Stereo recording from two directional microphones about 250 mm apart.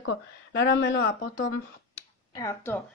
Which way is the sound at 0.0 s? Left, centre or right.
Left.